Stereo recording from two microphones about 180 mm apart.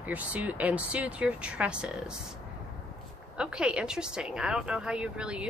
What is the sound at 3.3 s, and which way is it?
Speech, 5° right (ahead or behind).